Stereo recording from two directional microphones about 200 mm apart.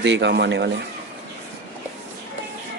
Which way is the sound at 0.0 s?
60° right (ahead or behind).